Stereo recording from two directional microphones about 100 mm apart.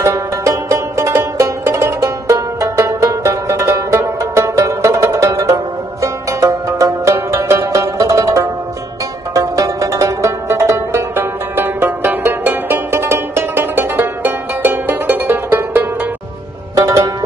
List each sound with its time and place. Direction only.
0.0 s music: 30° right (ahead or behind)
16.7 s music: 30° right (ahead or behind)